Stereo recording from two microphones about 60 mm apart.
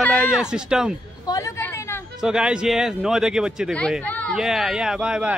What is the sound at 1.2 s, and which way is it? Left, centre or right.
Speech, left.